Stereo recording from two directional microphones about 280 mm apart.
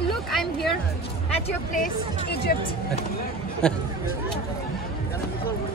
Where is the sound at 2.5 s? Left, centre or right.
Left.